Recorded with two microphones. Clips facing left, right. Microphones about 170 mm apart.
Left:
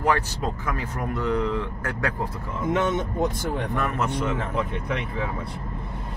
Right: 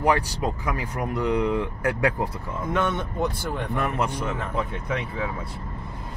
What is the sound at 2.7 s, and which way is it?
Speech, 20° left (ahead or behind).